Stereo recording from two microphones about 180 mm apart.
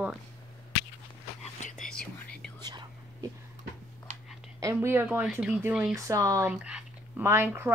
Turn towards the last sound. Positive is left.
turn(degrees=-15)  # may be behind; listen again after turning